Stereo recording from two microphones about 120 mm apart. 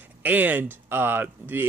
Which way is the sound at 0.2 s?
15° right (ahead or behind).